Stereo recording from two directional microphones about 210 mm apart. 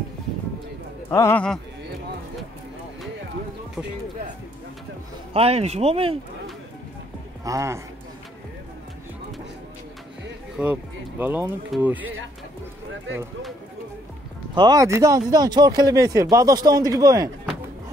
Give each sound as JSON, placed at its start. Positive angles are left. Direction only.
{"t": 1.1, "sound": "a man's voice", "side_deg": 10}
{"t": 5.3, "sound": "speech", "side_deg": -30}
{"t": 7.4, "sound": "speech", "side_deg": -15}
{"t": 10.6, "sound": "speech", "side_deg": -10}
{"t": 14.5, "sound": "speech", "side_deg": -20}